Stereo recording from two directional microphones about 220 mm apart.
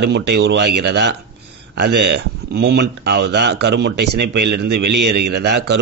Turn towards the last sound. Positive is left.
turn(degrees=-50)  # may be behind; listen again after turning